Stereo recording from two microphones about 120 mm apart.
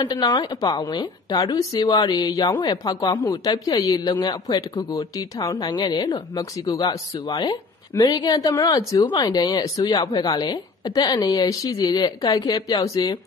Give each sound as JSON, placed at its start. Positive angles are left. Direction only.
{"t": 0.1, "sound": "speech", "side_deg": 35}